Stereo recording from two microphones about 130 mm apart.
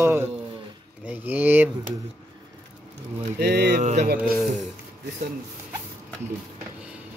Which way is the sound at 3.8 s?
60° right (ahead or behind).